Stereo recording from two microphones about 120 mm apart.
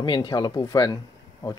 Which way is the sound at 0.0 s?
40° left (ahead or behind).